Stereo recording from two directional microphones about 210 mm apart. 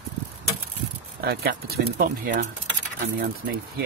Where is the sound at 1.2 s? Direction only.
50° right (ahead or behind).